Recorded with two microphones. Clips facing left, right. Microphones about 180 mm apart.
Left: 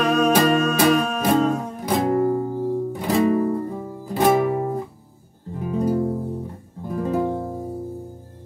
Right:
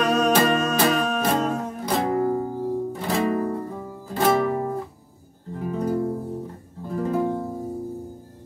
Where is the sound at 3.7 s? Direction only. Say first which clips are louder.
Left 3 dB; 10° left (ahead or behind).